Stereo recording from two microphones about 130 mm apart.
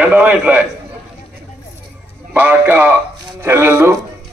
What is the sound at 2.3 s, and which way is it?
A man's voice, 15° right (ahead or behind).